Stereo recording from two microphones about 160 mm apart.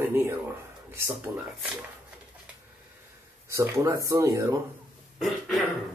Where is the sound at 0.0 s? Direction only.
15° right (ahead or behind).